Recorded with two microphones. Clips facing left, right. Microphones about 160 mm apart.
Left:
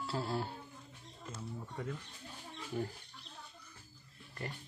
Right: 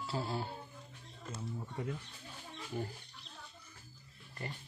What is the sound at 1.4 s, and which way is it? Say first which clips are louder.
Speech: right 2 dB; 15° right (ahead or behind).